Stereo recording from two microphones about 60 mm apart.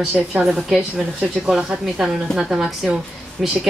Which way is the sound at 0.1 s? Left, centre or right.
Right.